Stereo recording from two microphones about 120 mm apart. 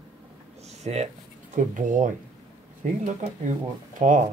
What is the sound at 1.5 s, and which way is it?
Speech, 90° right.